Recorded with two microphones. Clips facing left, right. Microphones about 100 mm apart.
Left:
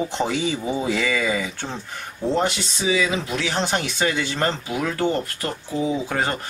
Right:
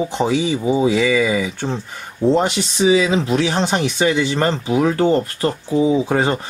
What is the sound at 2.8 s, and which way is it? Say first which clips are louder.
Speech: right 8 dB; 25° right (ahead or behind).